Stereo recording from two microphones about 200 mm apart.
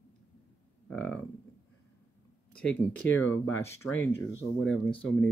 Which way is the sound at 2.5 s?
5° left (ahead or behind).